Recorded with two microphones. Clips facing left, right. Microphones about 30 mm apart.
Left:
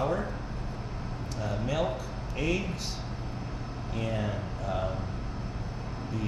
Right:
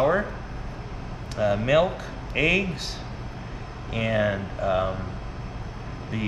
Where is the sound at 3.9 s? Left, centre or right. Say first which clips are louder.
Right 9 dB; right.